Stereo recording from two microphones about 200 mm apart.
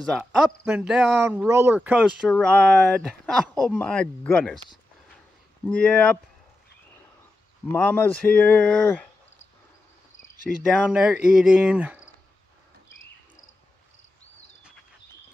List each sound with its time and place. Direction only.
0.7 s speech: 10° right (ahead or behind)
2.3 s speech: 5° left (ahead or behind)
5.7 s speech: 5° left (ahead or behind)
7.7 s speech: 10° left (ahead or behind)
10.4 s speech: centre (ahead or behind)